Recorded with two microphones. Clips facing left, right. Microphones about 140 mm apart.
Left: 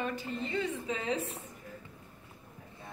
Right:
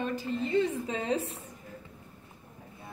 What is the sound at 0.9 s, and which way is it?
Speech, 35° right (ahead or behind).